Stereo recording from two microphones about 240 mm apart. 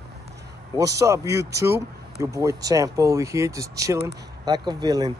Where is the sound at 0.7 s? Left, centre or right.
Centre.